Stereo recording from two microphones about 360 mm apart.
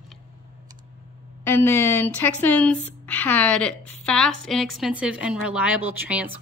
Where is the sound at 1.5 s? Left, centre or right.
Centre.